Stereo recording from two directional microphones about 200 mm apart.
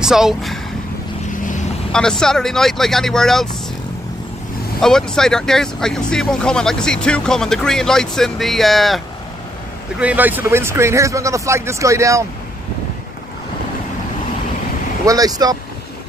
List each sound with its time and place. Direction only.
0.0 s speech: centre (ahead or behind)
1.9 s speech: 5° left (ahead or behind)
4.7 s speech: 5° left (ahead or behind); by 12.3 s 15° right (ahead or behind)
15.0 s speech: 20° right (ahead or behind)